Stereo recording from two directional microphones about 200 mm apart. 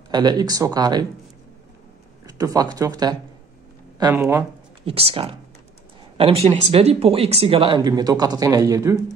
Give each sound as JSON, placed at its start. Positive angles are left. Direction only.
{"t": 0.1, "sound": "speech", "side_deg": -20}
{"t": 2.2, "sound": "speech", "side_deg": -15}
{"t": 4.8, "sound": "speech", "side_deg": -30}